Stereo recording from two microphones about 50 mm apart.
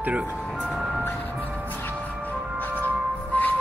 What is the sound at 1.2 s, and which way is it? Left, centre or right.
Music, left.